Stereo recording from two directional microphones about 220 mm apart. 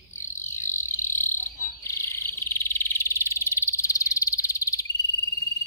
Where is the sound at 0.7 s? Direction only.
10° left (ahead or behind).